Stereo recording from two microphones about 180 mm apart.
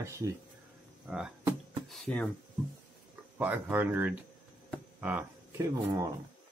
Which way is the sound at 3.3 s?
10° right (ahead or behind).